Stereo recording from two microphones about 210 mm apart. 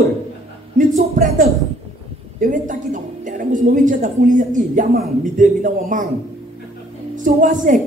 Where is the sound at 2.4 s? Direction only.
40° right (ahead or behind).